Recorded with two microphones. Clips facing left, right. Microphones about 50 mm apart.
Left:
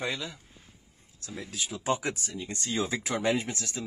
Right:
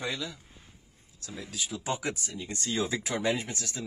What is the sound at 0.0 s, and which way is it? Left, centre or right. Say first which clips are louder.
Speech: left 1 dB; left.